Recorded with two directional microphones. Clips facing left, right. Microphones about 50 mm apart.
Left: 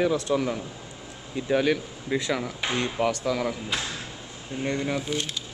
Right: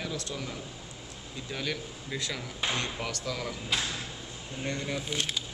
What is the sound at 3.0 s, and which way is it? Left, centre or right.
Speech, left.